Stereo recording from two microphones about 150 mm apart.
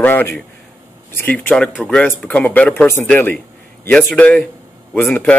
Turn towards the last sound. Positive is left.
turn(degrees=10)  # may be behind; listen again after turning